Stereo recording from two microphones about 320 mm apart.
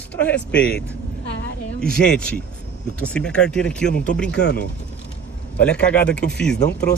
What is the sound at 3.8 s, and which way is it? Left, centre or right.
Speech, left.